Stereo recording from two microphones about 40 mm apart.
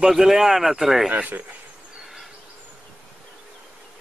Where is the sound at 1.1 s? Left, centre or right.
Right.